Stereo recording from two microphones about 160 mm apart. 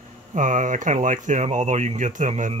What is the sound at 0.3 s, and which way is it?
Speech, 50° right (ahead or behind).